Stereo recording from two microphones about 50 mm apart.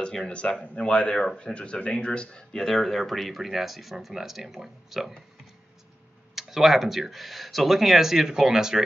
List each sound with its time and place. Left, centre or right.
0.0 s speech: centre
2.6 s speech: centre
6.3 s speech: centre